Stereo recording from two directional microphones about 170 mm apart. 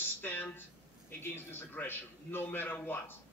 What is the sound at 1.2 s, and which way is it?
A man's voice, 15° left (ahead or behind).